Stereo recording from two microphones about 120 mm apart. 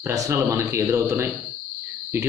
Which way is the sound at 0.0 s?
25° right (ahead or behind).